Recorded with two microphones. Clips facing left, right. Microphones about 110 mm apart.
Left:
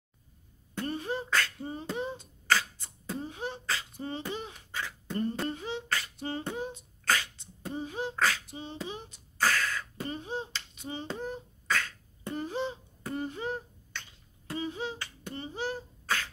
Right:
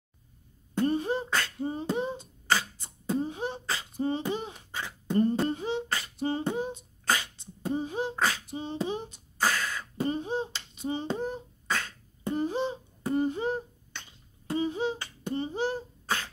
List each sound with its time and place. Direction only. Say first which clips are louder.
0.7 s beatboxing: right 7 dB; 25° right (ahead or behind)
9.4 s finger snapping: even; 15° right (ahead or behind)
14.5 s beatboxing: right 6 dB; 25° right (ahead or behind)